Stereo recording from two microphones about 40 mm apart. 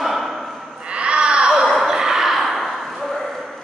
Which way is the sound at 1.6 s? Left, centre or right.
Centre.